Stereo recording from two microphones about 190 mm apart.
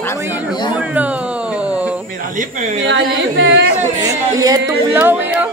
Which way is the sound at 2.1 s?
40° right (ahead or behind).